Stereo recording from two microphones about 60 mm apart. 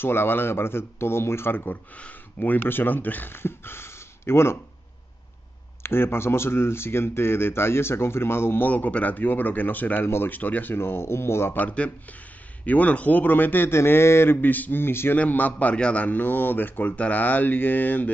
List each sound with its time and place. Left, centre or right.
0.0 s speech: left
2.0 s speech: left
5.8 s speech: left
10.0 s speech: left
10.3 s speech: left
11.5 s a man's voice: left
15.1 s a man's voice: left